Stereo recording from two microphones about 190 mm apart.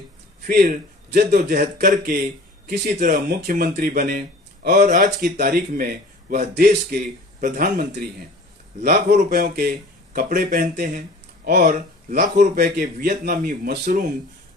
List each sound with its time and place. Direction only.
0.4 s speech: 50° right (ahead or behind)